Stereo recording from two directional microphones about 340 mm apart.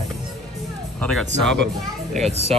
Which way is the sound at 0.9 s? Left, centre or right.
Centre.